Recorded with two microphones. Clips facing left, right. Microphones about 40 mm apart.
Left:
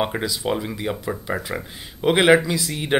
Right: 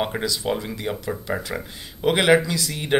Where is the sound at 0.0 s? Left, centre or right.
Centre.